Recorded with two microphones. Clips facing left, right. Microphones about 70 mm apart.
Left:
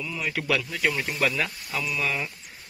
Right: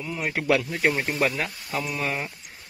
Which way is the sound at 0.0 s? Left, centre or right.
Right.